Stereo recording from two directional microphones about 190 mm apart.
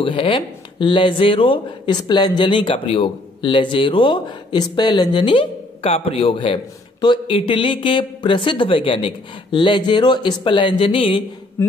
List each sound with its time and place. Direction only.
0.0 s speech: 25° left (ahead or behind)